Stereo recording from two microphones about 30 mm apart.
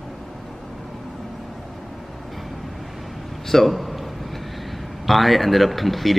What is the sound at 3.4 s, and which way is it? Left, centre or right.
Speech, centre.